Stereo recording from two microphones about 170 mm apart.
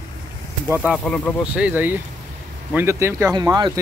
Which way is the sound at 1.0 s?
5° left (ahead or behind).